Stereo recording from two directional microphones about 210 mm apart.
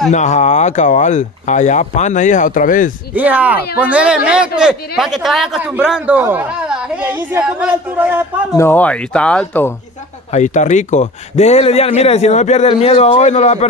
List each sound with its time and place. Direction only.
0.1 s a man's voice: 35° left (ahead or behind)
3.2 s a man's voice: 10° right (ahead or behind)
8.5 s speech: 10° left (ahead or behind)
10.3 s a man's voice: 35° left (ahead or behind)